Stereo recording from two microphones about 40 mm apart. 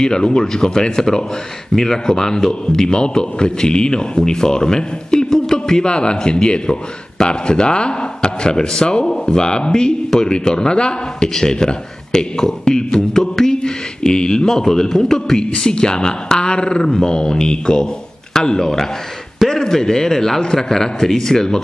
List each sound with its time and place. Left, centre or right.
0.0 s a man's voice: left